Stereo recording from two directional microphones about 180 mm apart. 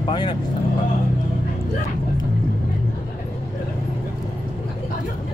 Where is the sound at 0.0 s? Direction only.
25° left (ahead or behind).